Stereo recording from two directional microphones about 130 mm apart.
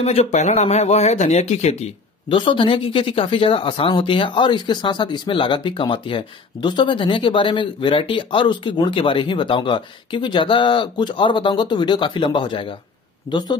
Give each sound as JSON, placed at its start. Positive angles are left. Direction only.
{"t": 0.0, "sound": "speech", "side_deg": 55}
{"t": 2.2, "sound": "speech", "side_deg": 40}